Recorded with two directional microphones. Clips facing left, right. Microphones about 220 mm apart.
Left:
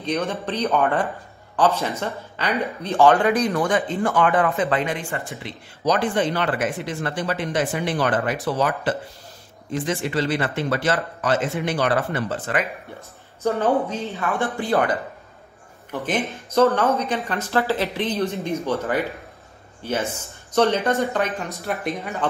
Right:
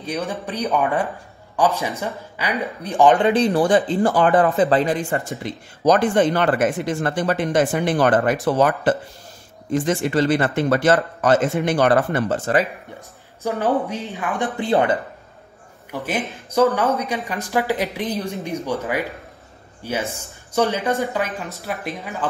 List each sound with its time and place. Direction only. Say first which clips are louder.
0.0 s speech: left 1 dB; 15° right (ahead or behind); by 12.6 s 40° right (ahead or behind)
13.4 s speech: left 1 dB; 15° right (ahead or behind)
15.9 s speech: left 1 dB; 10° right (ahead or behind)
21.0 s speech: left 1 dB; centre (ahead or behind)